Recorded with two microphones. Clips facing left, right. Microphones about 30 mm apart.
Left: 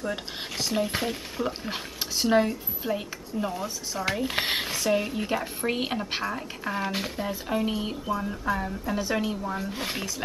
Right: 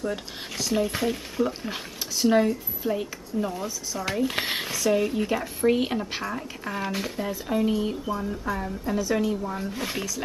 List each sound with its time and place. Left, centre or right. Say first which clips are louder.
0.0 s speech: right 1 dB; centre
3.6 s speech: left 1 dB; left
4.1 s speech: right 1 dB; centre
7.6 s speech: right 3 dB; centre
9.1 s speech: right 4 dB; centre
9.4 s speech: right 1 dB; centre